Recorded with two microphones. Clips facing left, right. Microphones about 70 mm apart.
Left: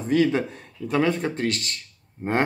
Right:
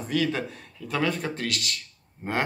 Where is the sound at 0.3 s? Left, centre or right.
Left.